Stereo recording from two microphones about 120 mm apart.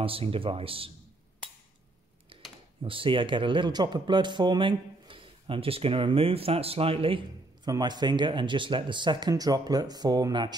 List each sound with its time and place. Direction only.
0.0 s speech: 50° right (ahead or behind)
2.8 s speech: 45° right (ahead or behind)
7.7 s speech: 35° right (ahead or behind)